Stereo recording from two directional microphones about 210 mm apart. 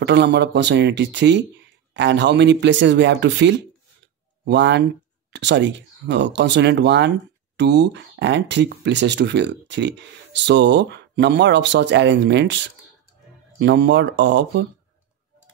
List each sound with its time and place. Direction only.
0.0 s speech: 55° right (ahead or behind)
13.6 s speech: 55° right (ahead or behind)